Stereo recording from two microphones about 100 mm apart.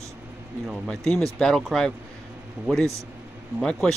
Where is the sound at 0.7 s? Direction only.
5° left (ahead or behind).